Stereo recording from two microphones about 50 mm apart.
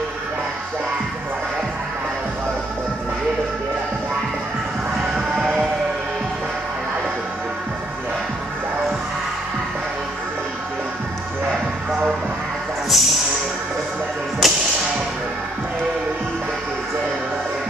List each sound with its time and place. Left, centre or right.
5.1 s music: centre
12.9 s music: centre
14.4 s music: centre